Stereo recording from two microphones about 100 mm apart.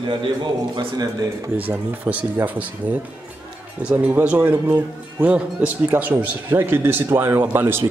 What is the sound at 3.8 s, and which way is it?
Speech, 15° right (ahead or behind).